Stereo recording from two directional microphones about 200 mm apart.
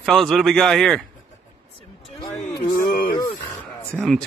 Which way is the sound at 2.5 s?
50° left (ahead or behind).